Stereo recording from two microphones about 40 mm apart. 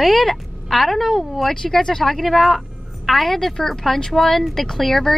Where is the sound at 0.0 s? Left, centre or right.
Centre.